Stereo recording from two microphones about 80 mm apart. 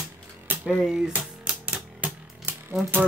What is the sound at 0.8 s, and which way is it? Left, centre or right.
Speech, centre.